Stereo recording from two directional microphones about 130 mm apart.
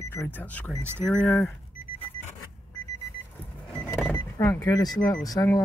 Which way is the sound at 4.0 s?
20° left (ahead or behind).